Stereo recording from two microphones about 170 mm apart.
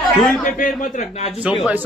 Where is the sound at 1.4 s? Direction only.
5° right (ahead or behind).